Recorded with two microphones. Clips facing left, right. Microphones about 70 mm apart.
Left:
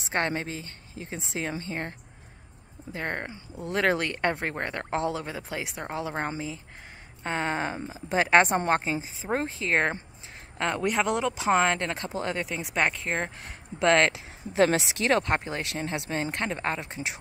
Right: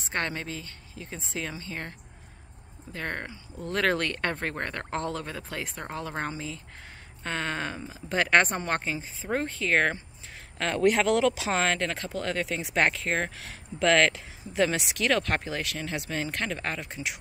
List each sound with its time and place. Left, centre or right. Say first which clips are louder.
0.1 s speech: left 3 dB; left
10.6 s speech: right 2 dB; centre
12.4 s speech: right 3 dB; centre
14.6 s speech: left 4 dB; left
15.0 s speech: even; left